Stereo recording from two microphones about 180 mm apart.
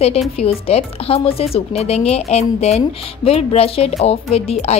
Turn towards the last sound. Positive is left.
turn(degrees=35)  # may be behind; listen again after turning